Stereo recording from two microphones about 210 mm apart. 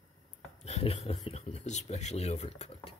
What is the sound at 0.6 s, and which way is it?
Speech, 30° left (ahead or behind).